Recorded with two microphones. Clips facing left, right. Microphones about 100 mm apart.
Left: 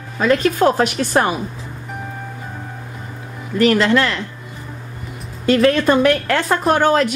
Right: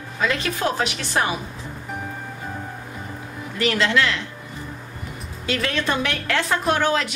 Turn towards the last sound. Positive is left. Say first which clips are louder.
# left 6 dB
turn(degrees=45)  # may be behind; listen again after turning